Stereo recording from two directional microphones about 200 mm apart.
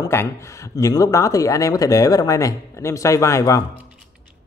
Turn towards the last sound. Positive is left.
turn(degrees=15)  # may be behind; listen again after turning